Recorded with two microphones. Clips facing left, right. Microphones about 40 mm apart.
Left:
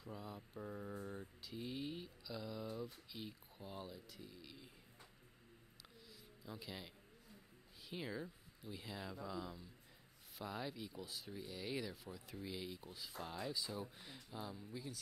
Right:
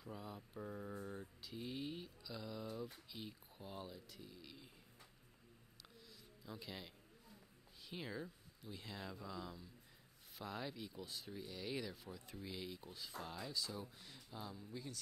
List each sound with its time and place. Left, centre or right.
0.0 s mantra: centre
3.1 s speech: centre
6.4 s speech: centre
7.9 s speech: centre